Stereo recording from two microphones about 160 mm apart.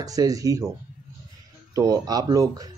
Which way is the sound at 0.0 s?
20° right (ahead or behind).